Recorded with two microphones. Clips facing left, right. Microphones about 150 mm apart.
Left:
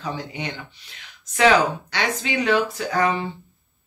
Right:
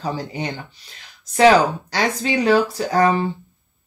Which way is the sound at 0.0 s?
35° right (ahead or behind).